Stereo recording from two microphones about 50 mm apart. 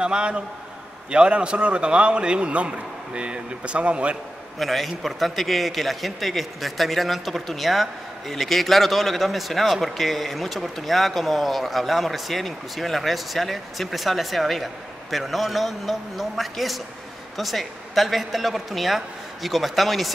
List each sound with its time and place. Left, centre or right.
0.0 s a man's voice: centre
4.6 s a man's voice: centre